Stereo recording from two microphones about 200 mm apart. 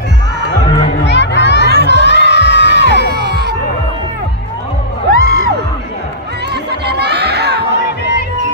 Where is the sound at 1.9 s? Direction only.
60° left (ahead or behind).